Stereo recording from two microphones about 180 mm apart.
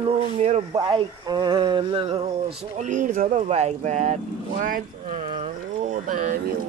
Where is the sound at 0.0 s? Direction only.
40° right (ahead or behind).